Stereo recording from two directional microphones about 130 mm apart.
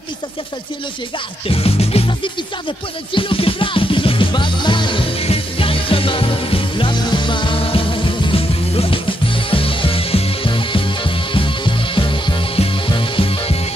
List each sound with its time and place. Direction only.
1.5 s music: 50° left (ahead or behind)